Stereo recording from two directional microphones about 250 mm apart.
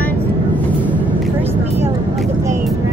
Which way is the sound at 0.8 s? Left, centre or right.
Centre.